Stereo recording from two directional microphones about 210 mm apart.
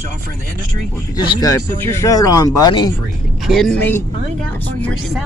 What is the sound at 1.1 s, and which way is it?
Speech, 15° left (ahead or behind).